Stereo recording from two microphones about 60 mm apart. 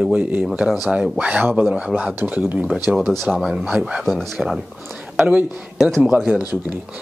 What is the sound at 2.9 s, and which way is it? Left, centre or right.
Speech, centre.